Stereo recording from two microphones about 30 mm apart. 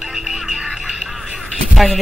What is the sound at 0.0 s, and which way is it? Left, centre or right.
Music, centre.